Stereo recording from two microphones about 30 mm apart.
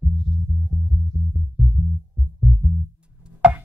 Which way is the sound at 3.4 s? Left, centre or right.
Right.